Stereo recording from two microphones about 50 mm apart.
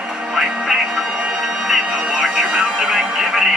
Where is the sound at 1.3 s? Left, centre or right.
Centre.